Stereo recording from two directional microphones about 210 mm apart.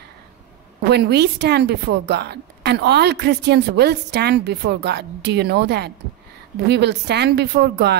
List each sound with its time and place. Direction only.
0.8 s a woman's voice: 50° right (ahead or behind)